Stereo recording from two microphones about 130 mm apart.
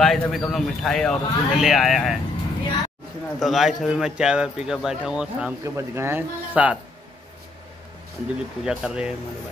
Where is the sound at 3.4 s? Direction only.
Centre (ahead or behind).